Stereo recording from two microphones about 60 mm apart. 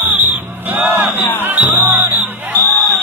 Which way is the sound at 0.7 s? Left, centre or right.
Right.